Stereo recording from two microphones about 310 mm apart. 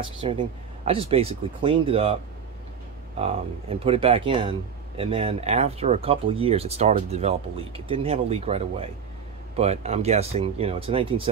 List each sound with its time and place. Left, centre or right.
0.2 s speech: centre
3.2 s speech: centre